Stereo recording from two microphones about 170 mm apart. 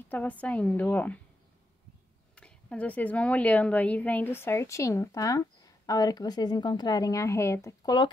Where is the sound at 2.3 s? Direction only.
5° left (ahead or behind).